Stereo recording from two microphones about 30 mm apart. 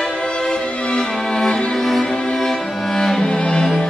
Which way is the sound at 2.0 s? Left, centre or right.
Left.